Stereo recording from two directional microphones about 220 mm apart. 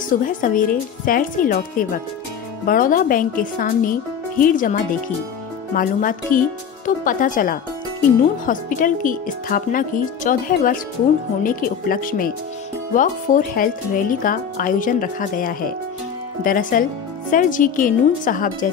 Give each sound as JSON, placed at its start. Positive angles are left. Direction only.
{"t": 0.1, "sound": "speech", "side_deg": 40}
{"t": 5.8, "sound": "speech", "side_deg": 40}